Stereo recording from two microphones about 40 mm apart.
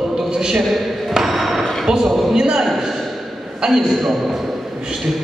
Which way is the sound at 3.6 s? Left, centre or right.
Centre.